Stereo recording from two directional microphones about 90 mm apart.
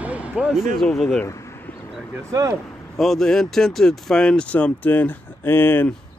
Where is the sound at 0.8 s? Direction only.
5° left (ahead or behind).